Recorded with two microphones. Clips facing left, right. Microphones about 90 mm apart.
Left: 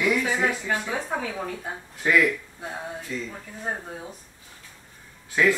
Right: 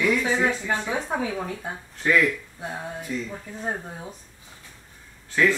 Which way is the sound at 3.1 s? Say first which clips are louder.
Right 3 dB; 15° right (ahead or behind).